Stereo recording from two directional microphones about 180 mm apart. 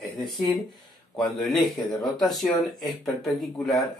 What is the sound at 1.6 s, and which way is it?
Speech, 25° left (ahead or behind).